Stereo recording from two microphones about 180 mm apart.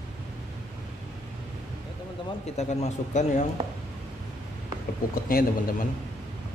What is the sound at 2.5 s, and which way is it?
Speech, 40° left (ahead or behind).